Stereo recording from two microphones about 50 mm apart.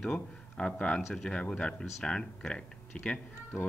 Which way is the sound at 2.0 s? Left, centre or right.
Centre.